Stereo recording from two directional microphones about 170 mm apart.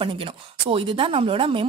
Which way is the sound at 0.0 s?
30° right (ahead or behind).